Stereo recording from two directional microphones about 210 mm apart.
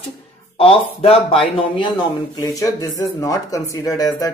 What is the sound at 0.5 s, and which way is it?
Speech, 25° left (ahead or behind).